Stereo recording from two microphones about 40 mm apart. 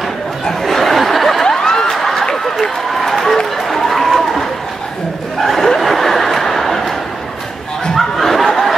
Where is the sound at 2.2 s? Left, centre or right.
Centre.